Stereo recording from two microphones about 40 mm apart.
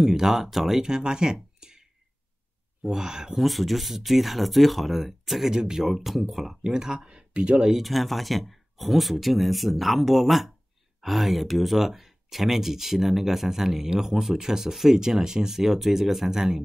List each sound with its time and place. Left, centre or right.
0.0 s speech: centre
0.8 s speech: centre
3.3 s speech: centre
5.5 s speech: centre
6.6 s speech: centre
7.2 s speech: right
7.8 s speech: centre